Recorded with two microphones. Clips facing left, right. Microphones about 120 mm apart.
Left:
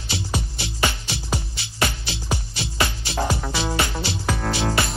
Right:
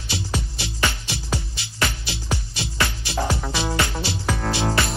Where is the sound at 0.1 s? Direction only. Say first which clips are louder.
Even; 20° left (ahead or behind).